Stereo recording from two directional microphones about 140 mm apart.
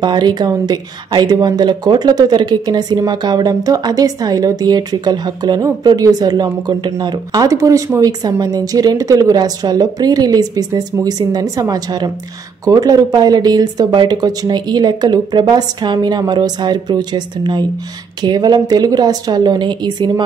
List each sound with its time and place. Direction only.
0.0 s a woman's voice: 30° right (ahead or behind)